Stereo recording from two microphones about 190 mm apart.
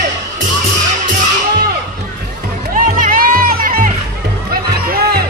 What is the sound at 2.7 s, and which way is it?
Music, 45° right (ahead or behind).